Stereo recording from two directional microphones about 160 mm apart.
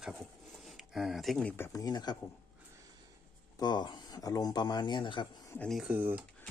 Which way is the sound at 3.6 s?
25° left (ahead or behind).